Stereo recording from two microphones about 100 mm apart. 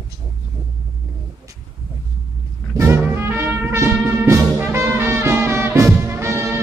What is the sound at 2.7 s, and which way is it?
Music, 25° right (ahead or behind).